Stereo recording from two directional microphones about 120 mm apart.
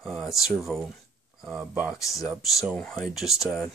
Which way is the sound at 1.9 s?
25° left (ahead or behind).